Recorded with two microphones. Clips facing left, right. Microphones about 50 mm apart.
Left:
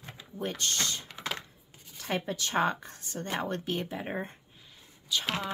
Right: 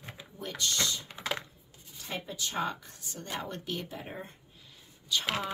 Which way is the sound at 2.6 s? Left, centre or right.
Left.